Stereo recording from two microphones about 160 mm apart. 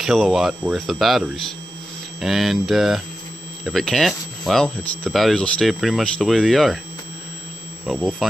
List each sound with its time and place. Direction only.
0.0 s speech: 5° right (ahead or behind)
7.8 s speech: centre (ahead or behind)